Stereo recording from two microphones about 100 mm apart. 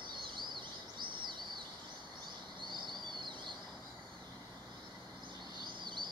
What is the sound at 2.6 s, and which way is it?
Bird, 50° right (ahead or behind).